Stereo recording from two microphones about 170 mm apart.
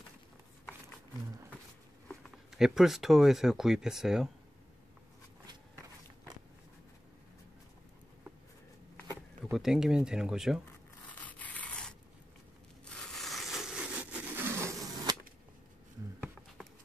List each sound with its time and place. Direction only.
2.5 s speech: 5° right (ahead or behind)
9.4 s speech: centre (ahead or behind)
11.2 s rub: 10° left (ahead or behind)
12.8 s crushing: centre (ahead or behind)
14.3 s a sound: 15° right (ahead or behind)